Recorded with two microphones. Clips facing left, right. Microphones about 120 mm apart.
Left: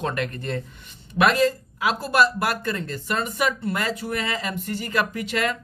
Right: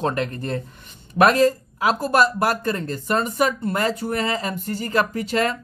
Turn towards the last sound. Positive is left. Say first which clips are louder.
# right 3 dB
turn(degrees=-35)  # may be behind; listen again after turning